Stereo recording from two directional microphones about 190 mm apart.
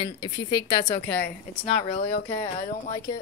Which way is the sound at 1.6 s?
30° left (ahead or behind).